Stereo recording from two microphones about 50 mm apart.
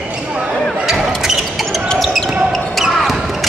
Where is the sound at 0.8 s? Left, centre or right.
Centre.